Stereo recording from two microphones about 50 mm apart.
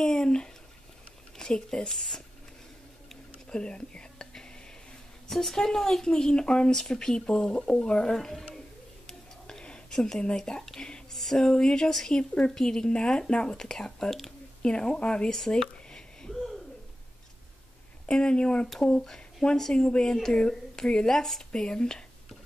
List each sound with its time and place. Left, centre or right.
0.0 s speech: centre
3.4 s whispering: centre
5.3 s speech: centre
9.0 s a sound: centre
10.8 s whispering: centre
11.1 s speech: centre
14.6 s speech: centre
15.3 s a sound: centre
18.0 s speech: centre